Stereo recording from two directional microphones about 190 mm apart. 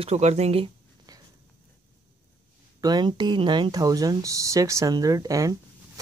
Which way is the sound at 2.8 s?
20° right (ahead or behind).